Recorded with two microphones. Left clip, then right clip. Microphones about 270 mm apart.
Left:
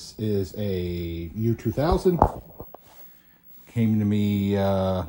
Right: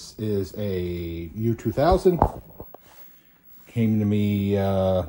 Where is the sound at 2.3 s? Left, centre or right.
Right.